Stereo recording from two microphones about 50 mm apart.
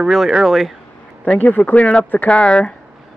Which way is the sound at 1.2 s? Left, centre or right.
Left.